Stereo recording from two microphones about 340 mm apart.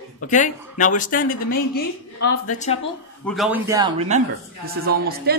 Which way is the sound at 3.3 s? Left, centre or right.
Centre.